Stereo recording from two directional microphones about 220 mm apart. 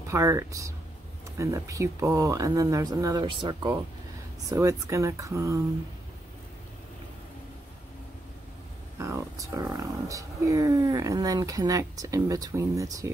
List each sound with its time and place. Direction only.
0.1 s speech: 15° right (ahead or behind)
9.0 s speech: 15° right (ahead or behind)